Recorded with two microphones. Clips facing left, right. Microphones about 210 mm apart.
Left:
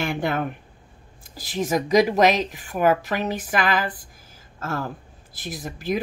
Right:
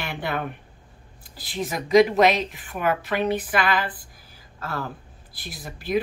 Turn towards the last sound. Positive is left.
turn(degrees=45)  # may be behind; listen again after turning